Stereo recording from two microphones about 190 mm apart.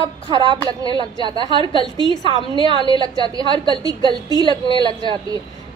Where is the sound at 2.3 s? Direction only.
25° right (ahead or behind).